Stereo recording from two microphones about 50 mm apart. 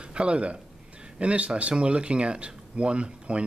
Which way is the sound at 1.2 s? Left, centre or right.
Right.